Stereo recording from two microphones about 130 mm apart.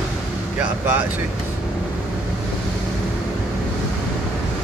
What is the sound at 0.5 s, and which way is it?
Speech, 15° right (ahead or behind).